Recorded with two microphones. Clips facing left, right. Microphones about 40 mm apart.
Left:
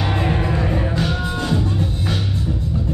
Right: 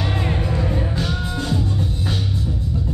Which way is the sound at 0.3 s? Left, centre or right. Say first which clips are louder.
Left 3 dB; left.